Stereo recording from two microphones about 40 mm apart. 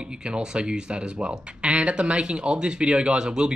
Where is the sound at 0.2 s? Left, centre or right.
Right.